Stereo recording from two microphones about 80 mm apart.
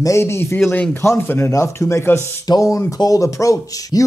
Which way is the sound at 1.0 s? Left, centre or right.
Left.